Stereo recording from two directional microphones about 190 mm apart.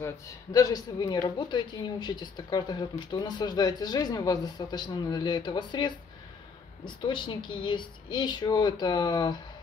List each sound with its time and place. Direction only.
0.0 s speech: 20° left (ahead or behind)